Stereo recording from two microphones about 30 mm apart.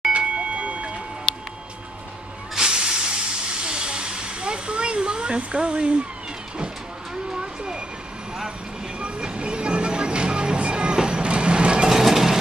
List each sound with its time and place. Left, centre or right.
0.1 s train: right
2.6 s hiss: right
7.3 s vehicle: right
9.0 s music: right
10.6 s vehicle: right
11.9 s vehicle: centre